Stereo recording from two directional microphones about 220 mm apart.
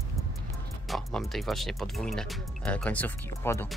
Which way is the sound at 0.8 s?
Centre (ahead or behind).